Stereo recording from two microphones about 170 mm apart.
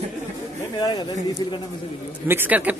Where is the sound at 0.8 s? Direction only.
25° left (ahead or behind).